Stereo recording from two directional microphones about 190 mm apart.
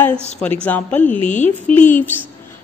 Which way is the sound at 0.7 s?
10° left (ahead or behind).